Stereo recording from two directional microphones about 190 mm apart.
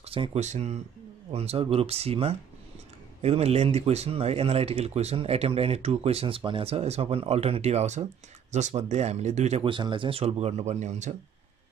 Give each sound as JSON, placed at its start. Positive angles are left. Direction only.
{"t": 0.0, "sound": "speech", "side_deg": -30}